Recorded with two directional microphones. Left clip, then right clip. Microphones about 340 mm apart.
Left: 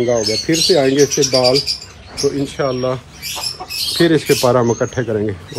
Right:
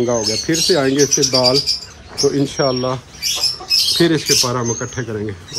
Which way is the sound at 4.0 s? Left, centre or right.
Centre.